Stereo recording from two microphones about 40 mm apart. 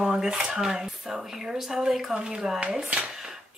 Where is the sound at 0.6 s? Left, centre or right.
Centre.